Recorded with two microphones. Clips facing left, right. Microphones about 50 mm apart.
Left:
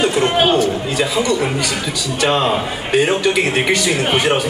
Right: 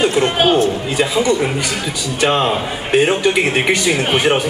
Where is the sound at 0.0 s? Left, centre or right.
Centre.